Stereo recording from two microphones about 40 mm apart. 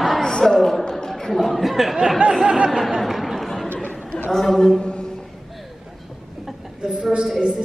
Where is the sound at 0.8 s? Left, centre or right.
Centre.